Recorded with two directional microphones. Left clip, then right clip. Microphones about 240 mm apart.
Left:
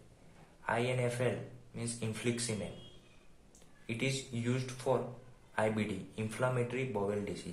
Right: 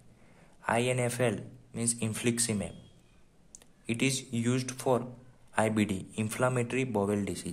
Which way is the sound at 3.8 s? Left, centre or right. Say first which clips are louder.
Right 5 dB; right.